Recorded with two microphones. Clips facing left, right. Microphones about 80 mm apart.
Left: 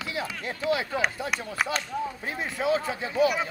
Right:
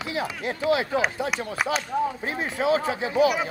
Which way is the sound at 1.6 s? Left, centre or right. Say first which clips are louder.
Right 3 dB; centre.